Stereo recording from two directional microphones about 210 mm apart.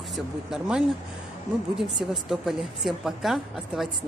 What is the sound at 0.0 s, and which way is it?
A woman's voice, centre (ahead or behind).